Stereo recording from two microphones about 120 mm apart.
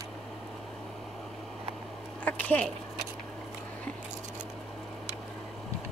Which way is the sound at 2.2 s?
10° left (ahead or behind).